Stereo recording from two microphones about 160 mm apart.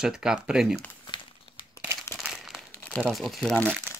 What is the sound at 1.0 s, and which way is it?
Crumpling, 30° left (ahead or behind).